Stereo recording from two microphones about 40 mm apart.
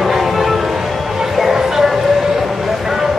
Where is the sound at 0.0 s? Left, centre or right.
Centre.